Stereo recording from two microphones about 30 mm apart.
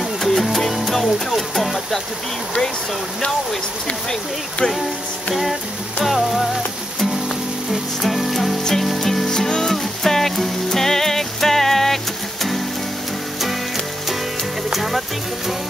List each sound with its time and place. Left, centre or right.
0.2 s music: centre
1.3 s speech: centre
5.3 s speech: centre
6.0 s music: centre
9.3 s music: centre
14.7 s music: centre